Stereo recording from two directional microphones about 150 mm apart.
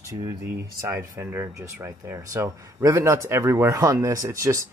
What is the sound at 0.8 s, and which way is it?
Speech, 15° right (ahead or behind).